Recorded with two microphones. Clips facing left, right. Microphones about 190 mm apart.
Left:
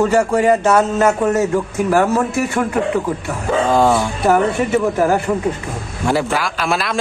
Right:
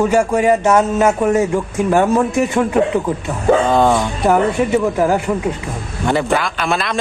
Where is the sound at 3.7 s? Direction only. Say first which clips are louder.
Even; 5° left (ahead or behind).